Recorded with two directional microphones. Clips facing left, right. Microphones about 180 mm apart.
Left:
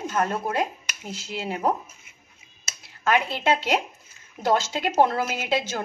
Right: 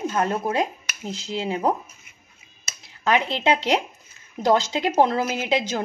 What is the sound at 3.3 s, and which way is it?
A woman's voice, 20° right (ahead or behind).